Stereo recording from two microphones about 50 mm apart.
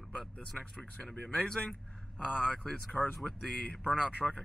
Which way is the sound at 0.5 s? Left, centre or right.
Centre.